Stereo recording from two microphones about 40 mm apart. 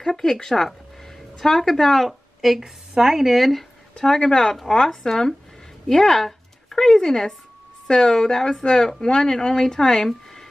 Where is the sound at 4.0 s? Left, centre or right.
Centre.